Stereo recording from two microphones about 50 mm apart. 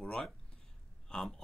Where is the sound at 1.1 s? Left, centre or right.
Centre.